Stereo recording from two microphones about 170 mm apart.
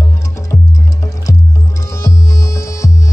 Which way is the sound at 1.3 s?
20° left (ahead or behind).